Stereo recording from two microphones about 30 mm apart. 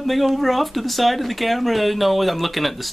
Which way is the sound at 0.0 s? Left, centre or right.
Centre.